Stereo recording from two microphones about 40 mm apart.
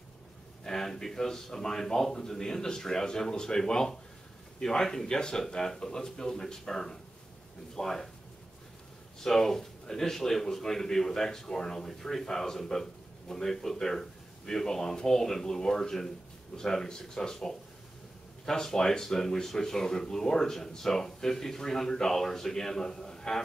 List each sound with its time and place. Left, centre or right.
0.7 s speech: centre
9.2 s speech: centre